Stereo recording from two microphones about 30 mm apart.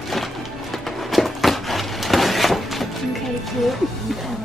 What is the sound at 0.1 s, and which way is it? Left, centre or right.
Music, centre.